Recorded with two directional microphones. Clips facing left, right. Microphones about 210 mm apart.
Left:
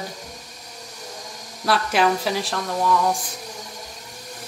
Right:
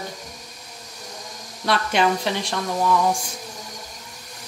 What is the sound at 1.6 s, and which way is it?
A woman's voice, centre (ahead or behind).